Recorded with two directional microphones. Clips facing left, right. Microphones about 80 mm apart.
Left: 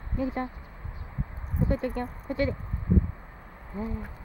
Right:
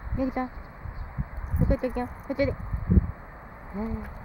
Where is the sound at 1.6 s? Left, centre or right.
Centre.